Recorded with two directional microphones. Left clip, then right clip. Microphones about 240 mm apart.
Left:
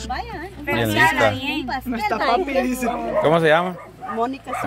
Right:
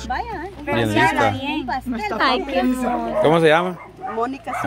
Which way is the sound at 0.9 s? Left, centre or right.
Centre.